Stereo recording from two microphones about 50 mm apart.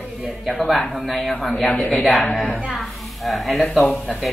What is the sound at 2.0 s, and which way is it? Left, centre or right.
Speech, left.